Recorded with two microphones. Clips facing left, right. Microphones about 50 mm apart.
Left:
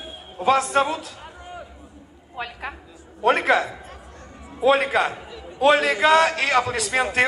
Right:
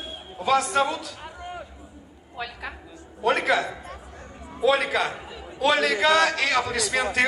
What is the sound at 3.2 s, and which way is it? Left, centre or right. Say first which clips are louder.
Speech: left 3 dB; left.